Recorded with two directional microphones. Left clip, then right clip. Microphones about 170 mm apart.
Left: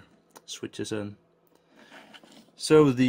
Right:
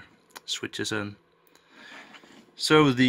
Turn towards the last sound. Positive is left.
turn(degrees=20)  # may be behind; listen again after turning